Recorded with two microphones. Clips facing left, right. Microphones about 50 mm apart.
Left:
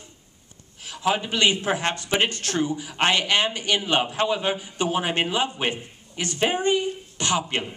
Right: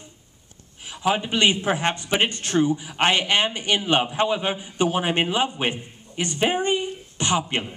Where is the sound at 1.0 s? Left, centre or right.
Centre.